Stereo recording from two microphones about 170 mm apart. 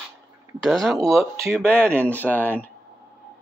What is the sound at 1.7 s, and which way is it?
Speech, 15° right (ahead or behind).